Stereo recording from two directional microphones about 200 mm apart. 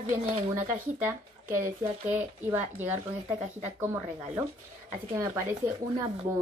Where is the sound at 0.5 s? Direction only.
10° right (ahead or behind).